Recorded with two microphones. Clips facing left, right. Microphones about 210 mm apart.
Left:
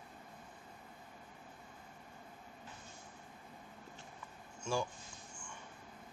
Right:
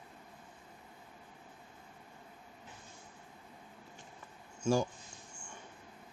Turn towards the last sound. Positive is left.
turn(degrees=-40)  # may be behind; listen again after turning